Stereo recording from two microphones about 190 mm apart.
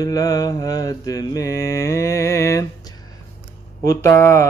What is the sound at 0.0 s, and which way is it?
Mantra, 20° left (ahead or behind).